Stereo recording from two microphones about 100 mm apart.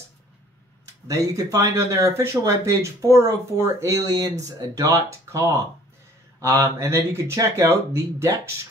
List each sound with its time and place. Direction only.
1.0 s speech: 35° right (ahead or behind)